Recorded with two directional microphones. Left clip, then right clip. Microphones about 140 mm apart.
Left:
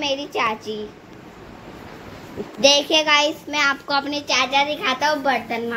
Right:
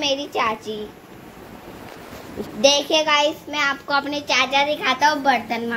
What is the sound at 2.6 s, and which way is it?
A child's voice, 10° left (ahead or behind).